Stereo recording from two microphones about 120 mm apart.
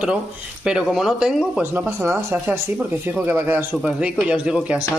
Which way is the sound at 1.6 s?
15° right (ahead or behind).